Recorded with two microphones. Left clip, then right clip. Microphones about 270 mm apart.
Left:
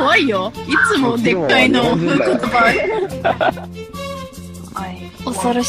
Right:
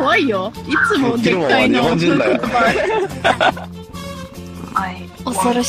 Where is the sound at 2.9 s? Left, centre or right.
Right.